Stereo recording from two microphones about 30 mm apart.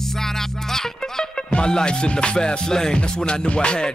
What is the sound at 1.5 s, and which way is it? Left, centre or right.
Music, left.